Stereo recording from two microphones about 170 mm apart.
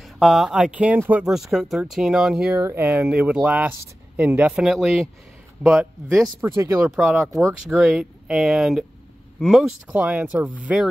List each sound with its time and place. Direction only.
0.0 s speech: centre (ahead or behind)
6.2 s speech: 15° right (ahead or behind)
7.0 s speech: centre (ahead or behind)